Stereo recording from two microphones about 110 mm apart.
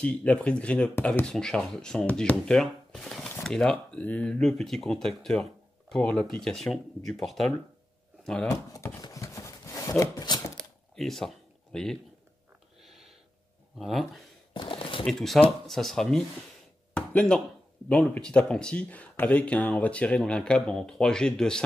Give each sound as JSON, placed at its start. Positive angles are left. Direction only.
{"t": 0.0, "sound": "speech", "side_deg": 10}
{"t": 8.5, "sound": "speech", "side_deg": 30}
{"t": 9.1, "sound": "shuffling cards", "side_deg": 30}
{"t": 10.6, "sound": "camera", "side_deg": 0}
{"t": 13.7, "sound": "speech", "side_deg": 0}
{"t": 14.5, "sound": "a sound", "side_deg": 50}
{"t": 15.0, "sound": "speech", "side_deg": 0}
{"t": 16.9, "sound": "a sound", "side_deg": 10}
{"t": 17.8, "sound": "speech", "side_deg": 10}